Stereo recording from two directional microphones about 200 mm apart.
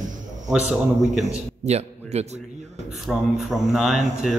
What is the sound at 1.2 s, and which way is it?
A man's voice, 35° right (ahead or behind).